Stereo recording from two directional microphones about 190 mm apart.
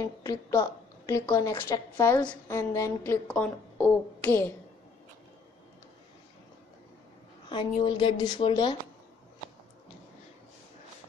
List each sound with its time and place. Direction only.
0.0 s a woman's voice: 15° left (ahead or behind)
7.4 s a woman's voice: 25° left (ahead or behind)